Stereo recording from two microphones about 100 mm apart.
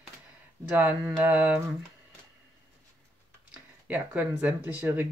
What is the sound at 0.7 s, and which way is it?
Speech, 15° right (ahead or behind).